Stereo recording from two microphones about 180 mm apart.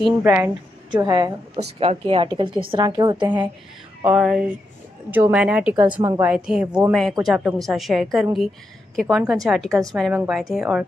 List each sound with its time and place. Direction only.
0.2 s a woman's voice: 10° right (ahead or behind)
1.6 s a woman's voice: 35° right (ahead or behind)
4.0 s a woman's voice: 5° right (ahead or behind)